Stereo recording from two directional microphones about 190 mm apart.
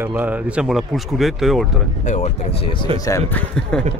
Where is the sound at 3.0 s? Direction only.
15° left (ahead or behind).